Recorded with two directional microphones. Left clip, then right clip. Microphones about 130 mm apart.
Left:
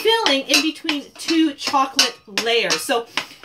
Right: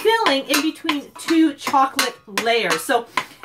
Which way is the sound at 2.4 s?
Centre (ahead or behind).